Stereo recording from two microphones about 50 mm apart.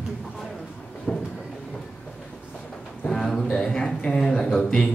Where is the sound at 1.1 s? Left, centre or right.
Centre.